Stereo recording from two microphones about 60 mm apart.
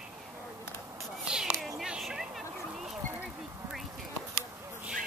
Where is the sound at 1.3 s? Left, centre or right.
Centre.